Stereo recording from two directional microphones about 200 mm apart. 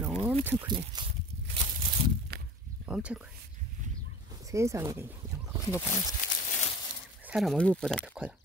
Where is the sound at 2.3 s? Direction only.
55° right (ahead or behind).